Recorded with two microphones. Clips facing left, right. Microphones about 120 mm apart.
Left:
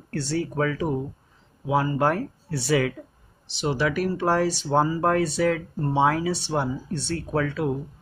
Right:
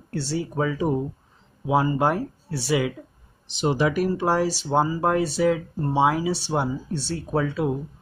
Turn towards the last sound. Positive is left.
turn(degrees=-20)  # may be behind; listen again after turning